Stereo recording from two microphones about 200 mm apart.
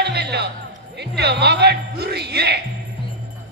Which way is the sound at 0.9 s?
55° right (ahead or behind).